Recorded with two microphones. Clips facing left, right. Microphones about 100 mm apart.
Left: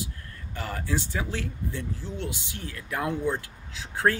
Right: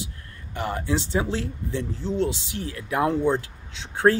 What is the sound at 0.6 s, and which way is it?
Speech, 20° right (ahead or behind).